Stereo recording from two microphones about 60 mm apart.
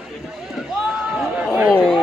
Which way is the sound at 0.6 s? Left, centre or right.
Centre.